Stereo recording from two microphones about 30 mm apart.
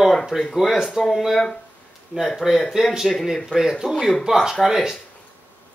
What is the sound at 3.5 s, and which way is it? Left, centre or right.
Speech, centre.